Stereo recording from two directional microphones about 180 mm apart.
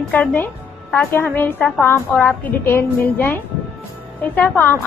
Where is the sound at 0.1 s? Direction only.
10° left (ahead or behind).